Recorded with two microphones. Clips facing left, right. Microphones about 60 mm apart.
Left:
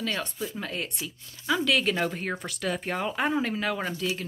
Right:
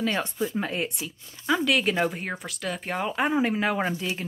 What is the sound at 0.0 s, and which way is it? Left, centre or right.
Speech, centre.